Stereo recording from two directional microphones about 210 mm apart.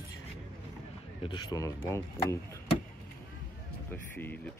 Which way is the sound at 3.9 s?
10° left (ahead or behind).